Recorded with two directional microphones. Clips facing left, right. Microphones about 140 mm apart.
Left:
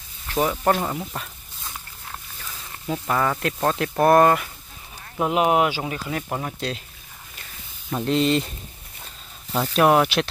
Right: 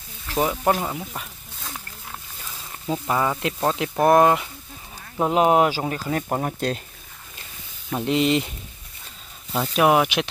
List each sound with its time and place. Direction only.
0.5 s speech: 10° right (ahead or behind)
2.9 s speech: 15° right (ahead or behind)
5.2 s speech: 35° right (ahead or behind)
8.0 s speech: 15° right (ahead or behind)
9.5 s speech: 5° right (ahead or behind)